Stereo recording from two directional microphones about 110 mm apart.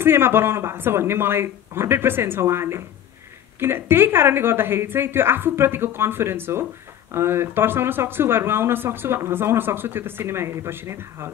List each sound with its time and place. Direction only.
0.0 s speech: 20° right (ahead or behind)